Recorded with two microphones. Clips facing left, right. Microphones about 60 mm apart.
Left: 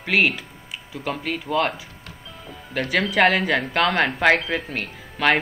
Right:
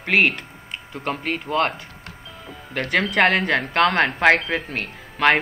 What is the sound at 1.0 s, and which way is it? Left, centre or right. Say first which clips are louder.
Speech: right 1 dB; right.